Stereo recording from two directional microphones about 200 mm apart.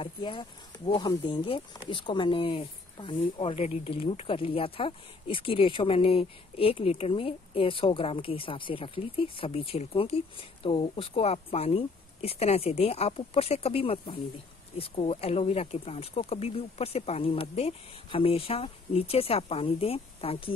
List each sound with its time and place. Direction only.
0.0 s speech: 25° left (ahead or behind)